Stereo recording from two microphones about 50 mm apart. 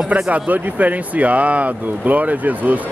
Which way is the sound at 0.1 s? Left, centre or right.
Right.